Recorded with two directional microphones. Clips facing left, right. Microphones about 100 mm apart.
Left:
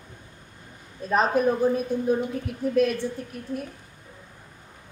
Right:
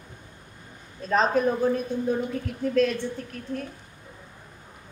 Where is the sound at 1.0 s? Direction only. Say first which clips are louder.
Left 1 dB; 10° left (ahead or behind).